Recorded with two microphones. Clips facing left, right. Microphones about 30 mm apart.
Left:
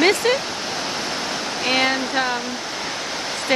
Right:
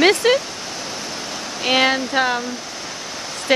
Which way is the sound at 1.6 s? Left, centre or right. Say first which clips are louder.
Right 3 dB; centre.